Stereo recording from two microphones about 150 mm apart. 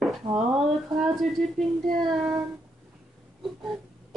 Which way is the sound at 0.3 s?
5° right (ahead or behind).